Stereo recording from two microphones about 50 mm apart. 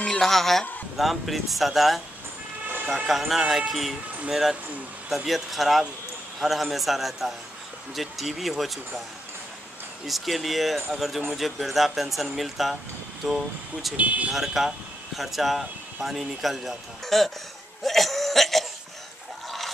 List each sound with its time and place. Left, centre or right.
0.1 s speech: centre
3.1 s speech: centre
10.0 s speech: centre
13.9 s speech: right
14.3 s speech: centre
17.8 s cough: centre